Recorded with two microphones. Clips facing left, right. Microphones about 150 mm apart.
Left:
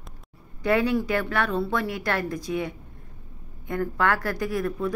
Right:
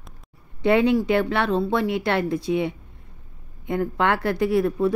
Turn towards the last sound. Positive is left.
turn(degrees=-20)  # may be behind; listen again after turning